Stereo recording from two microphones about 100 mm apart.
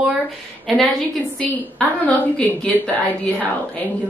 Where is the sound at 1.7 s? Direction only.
15° left (ahead or behind).